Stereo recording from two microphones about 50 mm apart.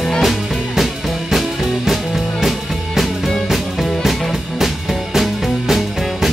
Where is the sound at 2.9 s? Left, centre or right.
Centre.